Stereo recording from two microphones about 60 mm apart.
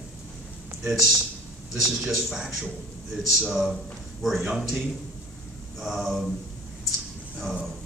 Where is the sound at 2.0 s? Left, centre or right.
Centre.